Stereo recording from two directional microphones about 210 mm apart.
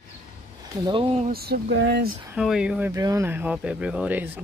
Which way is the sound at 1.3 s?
50° right (ahead or behind).